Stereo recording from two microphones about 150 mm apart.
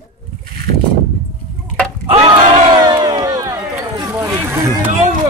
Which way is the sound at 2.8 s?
30° right (ahead or behind).